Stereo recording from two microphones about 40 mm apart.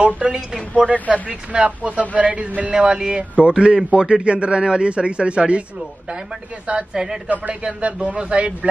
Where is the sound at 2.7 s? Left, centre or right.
Centre.